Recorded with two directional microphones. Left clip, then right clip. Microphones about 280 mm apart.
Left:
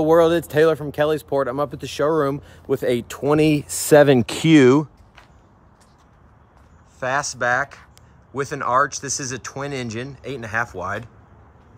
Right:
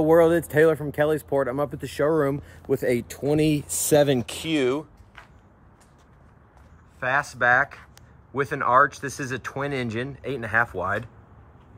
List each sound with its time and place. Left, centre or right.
0.0 s speech: centre; by 4.5 s left
7.0 s speech: centre